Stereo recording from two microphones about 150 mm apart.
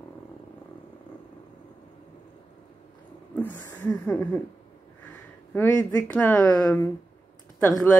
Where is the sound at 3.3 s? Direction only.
10° left (ahead or behind).